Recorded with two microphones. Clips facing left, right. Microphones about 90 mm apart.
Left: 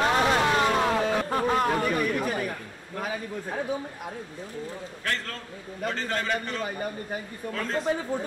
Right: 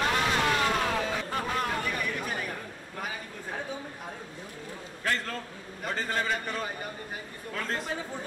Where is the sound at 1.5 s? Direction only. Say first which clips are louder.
Left 7 dB; 35° left (ahead or behind).